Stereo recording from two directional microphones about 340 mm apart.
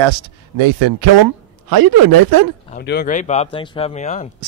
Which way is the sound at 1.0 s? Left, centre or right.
Right.